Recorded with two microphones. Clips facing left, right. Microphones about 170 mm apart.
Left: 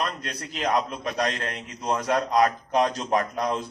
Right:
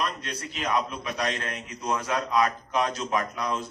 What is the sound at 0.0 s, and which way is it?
A man's voice, 45° left (ahead or behind).